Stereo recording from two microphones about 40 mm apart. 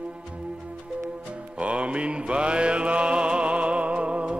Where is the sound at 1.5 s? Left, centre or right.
Right.